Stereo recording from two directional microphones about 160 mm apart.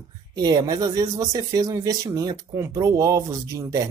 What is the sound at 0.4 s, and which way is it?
Speech, 25° right (ahead or behind).